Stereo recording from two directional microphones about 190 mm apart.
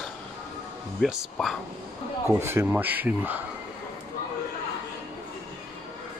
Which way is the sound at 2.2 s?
15° right (ahead or behind).